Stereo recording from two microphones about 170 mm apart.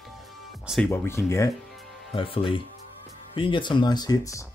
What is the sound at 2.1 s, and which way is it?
Speech, 30° left (ahead or behind).